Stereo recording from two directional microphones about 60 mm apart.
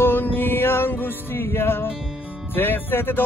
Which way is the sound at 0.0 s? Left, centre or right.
Left.